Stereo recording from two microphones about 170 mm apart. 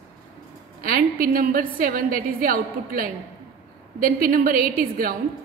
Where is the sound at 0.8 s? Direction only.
55° right (ahead or behind).